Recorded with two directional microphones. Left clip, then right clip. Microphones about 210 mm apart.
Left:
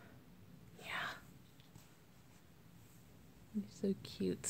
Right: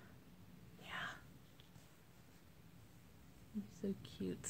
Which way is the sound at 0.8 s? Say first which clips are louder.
Left 4 dB; 35° left (ahead or behind).